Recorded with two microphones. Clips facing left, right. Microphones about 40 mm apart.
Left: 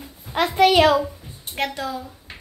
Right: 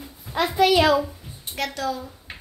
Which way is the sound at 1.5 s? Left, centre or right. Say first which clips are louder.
Left 1 dB; left.